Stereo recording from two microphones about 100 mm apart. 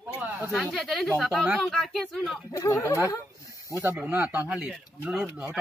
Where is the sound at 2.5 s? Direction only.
30° left (ahead or behind).